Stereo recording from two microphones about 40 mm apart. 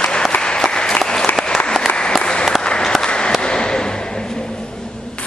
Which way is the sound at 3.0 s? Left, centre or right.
Left.